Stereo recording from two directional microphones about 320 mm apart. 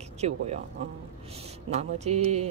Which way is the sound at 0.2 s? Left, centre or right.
Centre.